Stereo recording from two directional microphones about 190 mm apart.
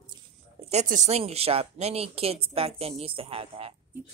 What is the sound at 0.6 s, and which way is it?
Speech, 35° right (ahead or behind).